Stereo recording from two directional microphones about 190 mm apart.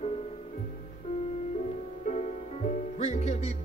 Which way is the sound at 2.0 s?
40° left (ahead or behind).